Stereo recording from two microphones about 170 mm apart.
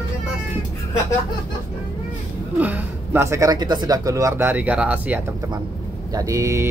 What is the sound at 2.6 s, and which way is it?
Speech, 10° right (ahead or behind).